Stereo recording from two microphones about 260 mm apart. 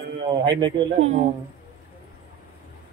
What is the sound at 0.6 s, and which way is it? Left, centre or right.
Speech, right.